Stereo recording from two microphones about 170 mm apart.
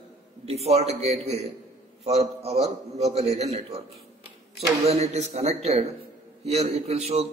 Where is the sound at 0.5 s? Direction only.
40° right (ahead or behind).